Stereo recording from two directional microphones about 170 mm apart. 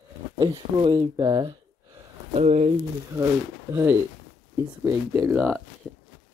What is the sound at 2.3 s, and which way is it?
Speech, 40° right (ahead or behind).